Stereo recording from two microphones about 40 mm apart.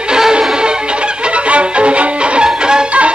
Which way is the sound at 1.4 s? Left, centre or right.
Right.